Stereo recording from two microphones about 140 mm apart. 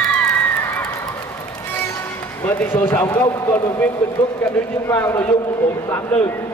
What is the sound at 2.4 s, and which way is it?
A man's voice, 15° left (ahead or behind).